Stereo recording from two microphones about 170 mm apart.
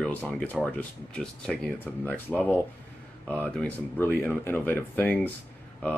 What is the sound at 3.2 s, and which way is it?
Speech, 10° left (ahead or behind).